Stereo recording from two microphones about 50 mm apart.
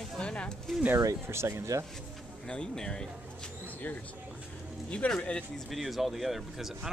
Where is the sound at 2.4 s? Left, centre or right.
Centre.